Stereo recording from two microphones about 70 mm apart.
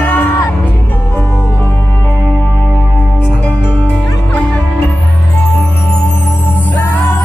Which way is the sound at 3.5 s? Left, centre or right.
Left.